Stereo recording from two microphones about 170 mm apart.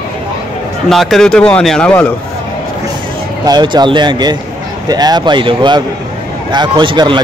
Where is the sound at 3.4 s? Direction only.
25° right (ahead or behind).